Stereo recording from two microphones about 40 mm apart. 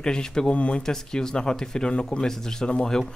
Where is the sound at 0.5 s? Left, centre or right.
Left.